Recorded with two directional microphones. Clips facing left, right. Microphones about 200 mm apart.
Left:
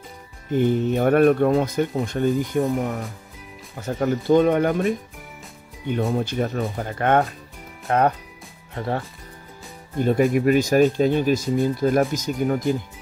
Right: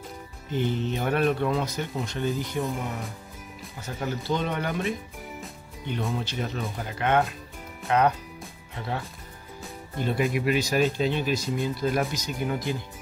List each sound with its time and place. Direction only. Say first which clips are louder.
0.5 s speech: left 8 dB; 50° left (ahead or behind)
3.8 s speech: left 9 dB; 50° left (ahead or behind)